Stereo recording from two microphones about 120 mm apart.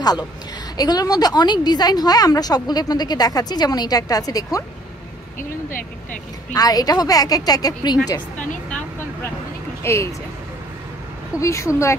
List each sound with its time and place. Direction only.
0.7 s a woman's voice: 30° left (ahead or behind)
6.5 s a woman's voice: 30° left (ahead or behind)
9.8 s a woman's voice: 25° left (ahead or behind)
11.3 s a woman's voice: 25° left (ahead or behind)